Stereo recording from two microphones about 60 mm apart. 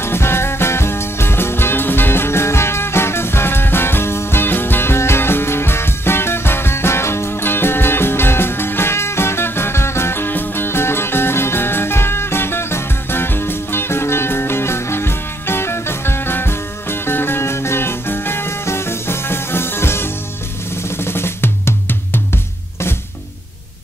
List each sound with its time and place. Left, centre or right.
0.0 s music: left
21.0 s drum: left